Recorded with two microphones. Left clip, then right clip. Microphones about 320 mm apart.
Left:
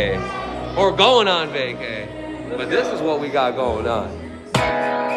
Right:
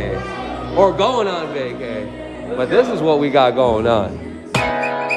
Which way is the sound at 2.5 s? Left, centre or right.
Centre.